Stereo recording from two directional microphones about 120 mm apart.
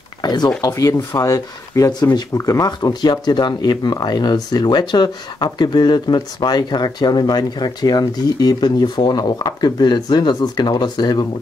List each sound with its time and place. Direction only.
0.2 s speech: 35° left (ahead or behind)